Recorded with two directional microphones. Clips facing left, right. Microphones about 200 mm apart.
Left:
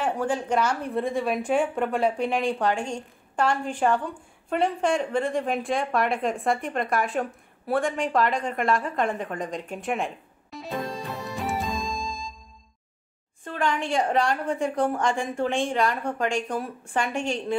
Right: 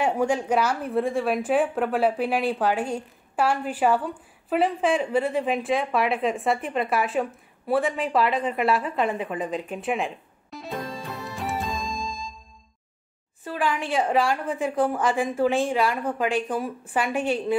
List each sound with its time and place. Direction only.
0.0 s speech: 10° right (ahead or behind)
13.4 s speech: 5° right (ahead or behind)